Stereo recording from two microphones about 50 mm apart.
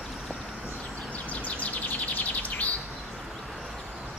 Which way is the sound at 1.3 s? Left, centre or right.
Left.